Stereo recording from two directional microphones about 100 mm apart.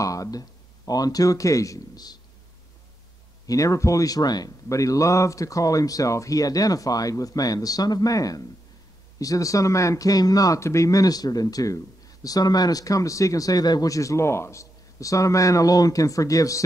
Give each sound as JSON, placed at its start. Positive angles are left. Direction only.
{"t": 0.0, "sound": "speech", "side_deg": 35}
{"t": 3.4, "sound": "speech", "side_deg": 35}